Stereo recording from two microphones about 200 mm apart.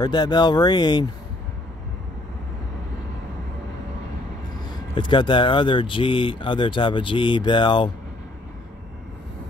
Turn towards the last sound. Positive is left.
turn(degrees=25)  # may be behind; listen again after turning